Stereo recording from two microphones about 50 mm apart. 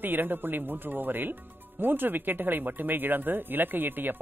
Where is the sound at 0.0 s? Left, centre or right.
Right.